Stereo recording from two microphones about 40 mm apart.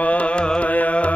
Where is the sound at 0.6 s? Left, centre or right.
Left.